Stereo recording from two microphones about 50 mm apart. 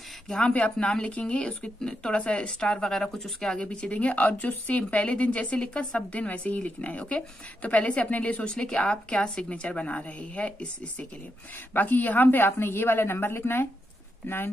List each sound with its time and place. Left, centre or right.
0.3 s speech: centre
0.6 s speech: left; by 3.5 s centre
3.5 s speech: left
8.6 s speech: centre
11.7 s a woman's voice: left